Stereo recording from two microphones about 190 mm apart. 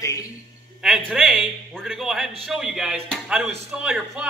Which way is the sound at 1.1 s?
5° right (ahead or behind).